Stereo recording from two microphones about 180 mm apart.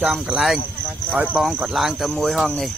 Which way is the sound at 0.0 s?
5° right (ahead or behind).